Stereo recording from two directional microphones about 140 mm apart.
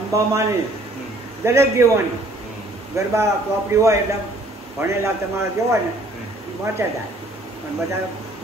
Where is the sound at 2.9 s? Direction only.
20° right (ahead or behind).